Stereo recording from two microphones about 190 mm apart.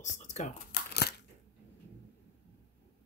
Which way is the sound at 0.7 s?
60° left (ahead or behind).